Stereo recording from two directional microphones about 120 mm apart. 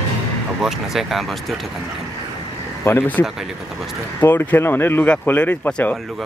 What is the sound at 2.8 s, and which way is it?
Speech, 15° left (ahead or behind).